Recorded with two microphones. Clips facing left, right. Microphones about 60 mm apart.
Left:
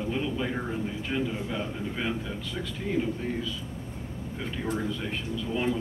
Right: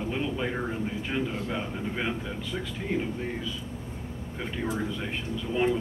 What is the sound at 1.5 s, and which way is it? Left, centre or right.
Speech, centre.